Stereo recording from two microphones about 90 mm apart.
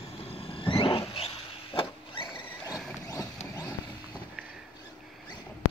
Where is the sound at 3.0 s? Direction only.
40° left (ahead or behind).